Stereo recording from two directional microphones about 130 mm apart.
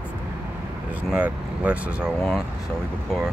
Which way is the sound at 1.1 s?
10° right (ahead or behind).